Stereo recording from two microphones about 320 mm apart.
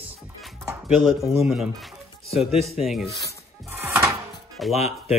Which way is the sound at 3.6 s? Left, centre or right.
Centre.